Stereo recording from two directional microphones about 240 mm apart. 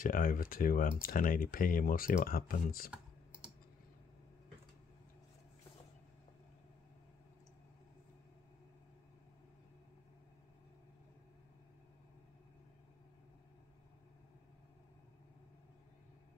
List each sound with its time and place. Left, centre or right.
0.0 s speech: left